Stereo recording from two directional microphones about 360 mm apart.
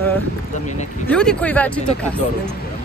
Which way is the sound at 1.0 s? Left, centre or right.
Centre.